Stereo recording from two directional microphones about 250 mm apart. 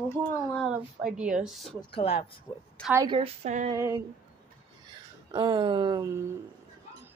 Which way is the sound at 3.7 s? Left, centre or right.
Centre.